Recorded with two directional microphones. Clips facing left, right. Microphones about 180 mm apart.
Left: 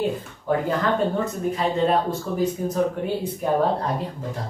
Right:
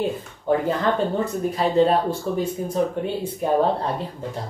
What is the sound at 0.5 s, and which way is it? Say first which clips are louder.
Speech: right 1 dB; 25° right (ahead or behind).